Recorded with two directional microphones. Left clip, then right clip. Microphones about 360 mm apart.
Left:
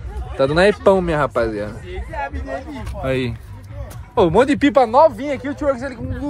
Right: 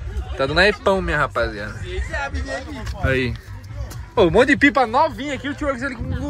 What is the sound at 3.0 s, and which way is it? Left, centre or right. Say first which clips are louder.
Speech: even; centre.